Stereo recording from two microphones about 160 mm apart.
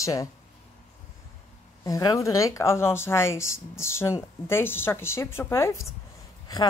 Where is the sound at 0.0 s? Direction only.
20° left (ahead or behind).